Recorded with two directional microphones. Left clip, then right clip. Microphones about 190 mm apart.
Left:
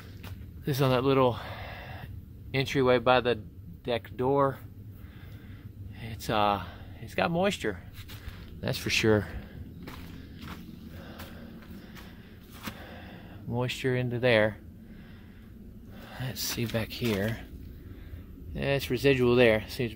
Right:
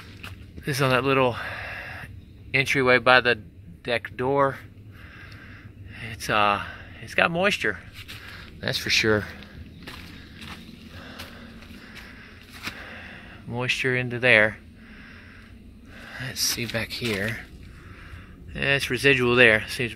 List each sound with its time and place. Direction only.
0.7 s speech: 5° right (ahead or behind)
5.9 s speech: centre (ahead or behind)
11.0 s a sound: 10° right (ahead or behind)
12.7 s a sound: centre (ahead or behind)
16.0 s speech: 10° left (ahead or behind)
18.5 s speech: 5° right (ahead or behind)